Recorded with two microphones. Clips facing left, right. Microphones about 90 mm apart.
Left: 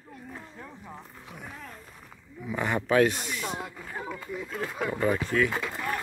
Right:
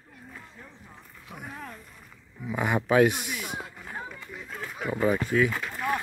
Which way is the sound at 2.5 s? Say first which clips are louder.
Right 1 dB; 10° right (ahead or behind).